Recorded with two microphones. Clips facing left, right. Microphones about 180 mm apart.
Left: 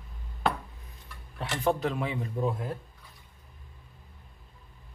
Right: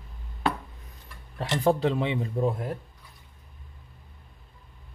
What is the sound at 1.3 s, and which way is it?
Speech, 30° right (ahead or behind).